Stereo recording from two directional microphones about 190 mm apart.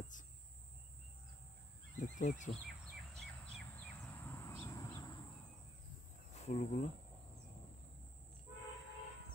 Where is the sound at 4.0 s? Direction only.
15° left (ahead or behind).